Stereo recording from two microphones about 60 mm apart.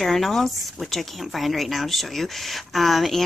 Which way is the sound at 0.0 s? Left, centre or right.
Centre.